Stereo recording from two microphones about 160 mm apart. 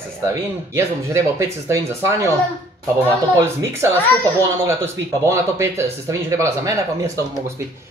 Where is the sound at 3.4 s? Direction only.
15° right (ahead or behind).